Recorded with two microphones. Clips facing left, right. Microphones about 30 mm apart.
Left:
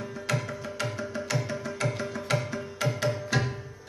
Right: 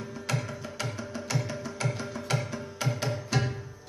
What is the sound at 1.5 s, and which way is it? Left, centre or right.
Music, left.